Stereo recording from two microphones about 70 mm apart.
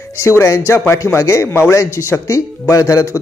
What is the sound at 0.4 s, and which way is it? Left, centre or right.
A man's voice, left.